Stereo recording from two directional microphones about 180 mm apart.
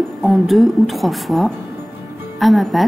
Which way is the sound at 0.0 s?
Centre (ahead or behind).